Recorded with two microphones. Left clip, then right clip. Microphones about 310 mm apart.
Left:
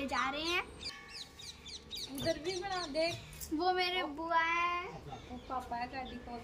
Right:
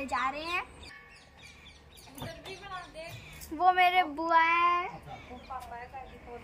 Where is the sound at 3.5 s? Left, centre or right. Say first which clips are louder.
Right 9 dB; centre.